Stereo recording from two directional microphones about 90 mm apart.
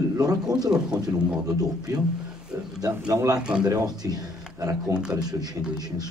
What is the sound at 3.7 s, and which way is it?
Speech, 50° right (ahead or behind).